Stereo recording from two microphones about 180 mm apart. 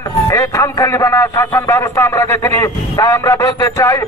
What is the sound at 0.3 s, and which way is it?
A man's voice, 15° left (ahead or behind).